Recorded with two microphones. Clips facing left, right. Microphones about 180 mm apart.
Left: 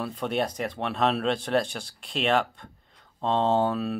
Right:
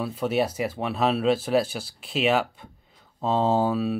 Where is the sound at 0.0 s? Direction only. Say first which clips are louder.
Right 3 dB; 5° right (ahead or behind).